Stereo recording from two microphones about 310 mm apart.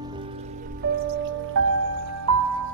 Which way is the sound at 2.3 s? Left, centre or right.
Right.